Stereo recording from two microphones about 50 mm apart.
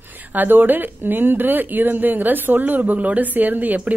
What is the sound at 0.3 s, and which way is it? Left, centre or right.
Speech, right.